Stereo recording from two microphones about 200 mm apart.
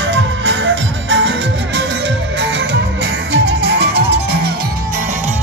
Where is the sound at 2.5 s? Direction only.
60° right (ahead or behind).